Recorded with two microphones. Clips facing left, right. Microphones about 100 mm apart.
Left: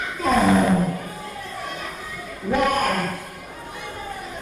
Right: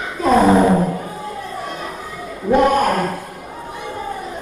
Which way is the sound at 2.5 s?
30° right (ahead or behind).